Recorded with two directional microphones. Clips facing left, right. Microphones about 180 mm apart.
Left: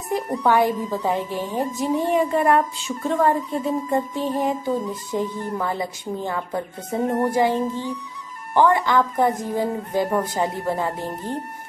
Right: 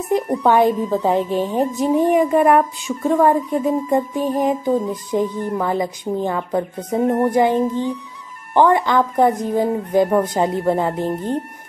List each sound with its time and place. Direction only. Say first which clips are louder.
0.1 s a woman's voice: right 4 dB; 20° right (ahead or behind)